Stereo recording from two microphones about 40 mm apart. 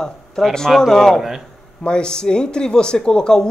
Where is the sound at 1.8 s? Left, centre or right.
Left.